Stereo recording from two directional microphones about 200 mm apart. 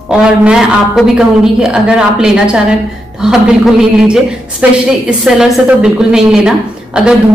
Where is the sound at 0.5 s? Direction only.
5° right (ahead or behind).